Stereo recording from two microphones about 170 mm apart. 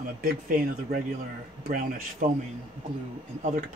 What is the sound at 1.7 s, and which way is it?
Speech, 55° right (ahead or behind).